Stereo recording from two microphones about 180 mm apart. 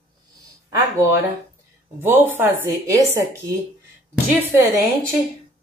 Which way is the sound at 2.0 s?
10° right (ahead or behind).